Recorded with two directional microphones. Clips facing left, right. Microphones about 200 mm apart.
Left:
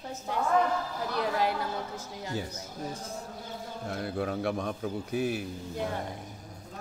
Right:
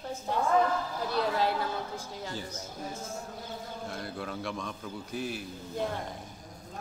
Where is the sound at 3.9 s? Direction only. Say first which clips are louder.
Left 8 dB; 60° left (ahead or behind).